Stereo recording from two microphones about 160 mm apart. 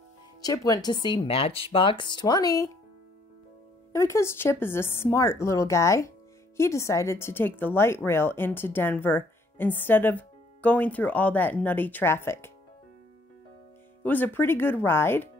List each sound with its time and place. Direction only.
0.4 s speech: 25° left (ahead or behind)
3.9 s speech: 15° left (ahead or behind)
14.0 s speech: 10° left (ahead or behind)